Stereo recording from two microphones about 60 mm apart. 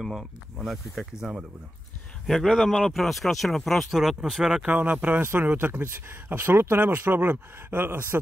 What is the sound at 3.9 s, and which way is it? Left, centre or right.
Speech, centre.